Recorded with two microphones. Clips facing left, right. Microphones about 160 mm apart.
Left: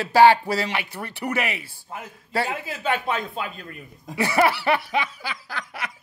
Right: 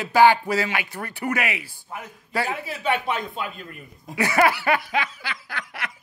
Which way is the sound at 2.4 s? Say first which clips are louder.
Right 1 dB; centre (ahead or behind).